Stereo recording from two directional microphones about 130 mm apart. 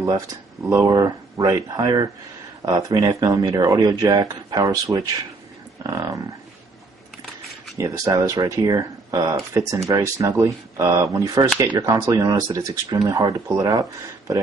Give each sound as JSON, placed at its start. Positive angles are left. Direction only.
{"t": 0.0, "sound": "speech", "side_deg": -25}
{"t": 5.9, "sound": "livestock", "side_deg": -25}
{"t": 7.7, "sound": "speech", "side_deg": -25}